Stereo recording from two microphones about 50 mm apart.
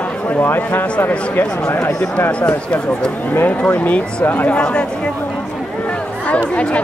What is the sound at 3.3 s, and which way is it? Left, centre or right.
Speech, left.